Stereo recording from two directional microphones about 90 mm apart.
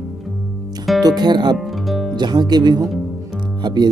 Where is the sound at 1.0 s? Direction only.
50° right (ahead or behind).